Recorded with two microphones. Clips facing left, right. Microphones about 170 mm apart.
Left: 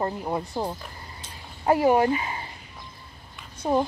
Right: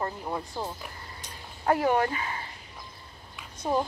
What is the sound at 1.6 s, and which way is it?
Speech, 10° left (ahead or behind).